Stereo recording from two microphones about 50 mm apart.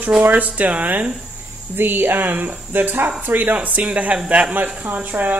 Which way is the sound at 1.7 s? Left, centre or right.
Right.